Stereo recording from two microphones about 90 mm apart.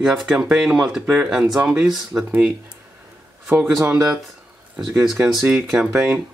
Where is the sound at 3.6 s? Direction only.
5° right (ahead or behind).